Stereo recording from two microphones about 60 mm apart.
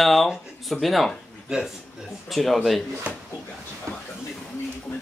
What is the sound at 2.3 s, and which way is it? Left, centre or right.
Speech, centre.